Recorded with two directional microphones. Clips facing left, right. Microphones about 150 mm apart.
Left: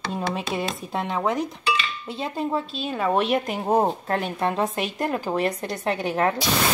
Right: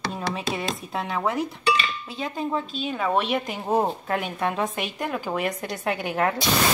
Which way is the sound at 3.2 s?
40° left (ahead or behind).